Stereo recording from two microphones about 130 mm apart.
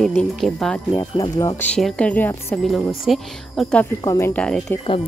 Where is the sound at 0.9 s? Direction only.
30° left (ahead or behind).